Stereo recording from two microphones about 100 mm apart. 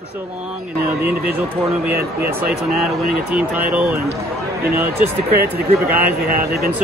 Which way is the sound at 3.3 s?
15° right (ahead or behind).